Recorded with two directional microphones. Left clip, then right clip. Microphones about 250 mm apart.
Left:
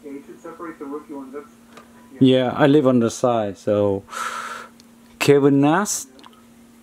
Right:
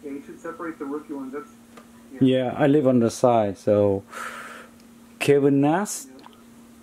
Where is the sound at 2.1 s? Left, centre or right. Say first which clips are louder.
Left 5 dB; centre.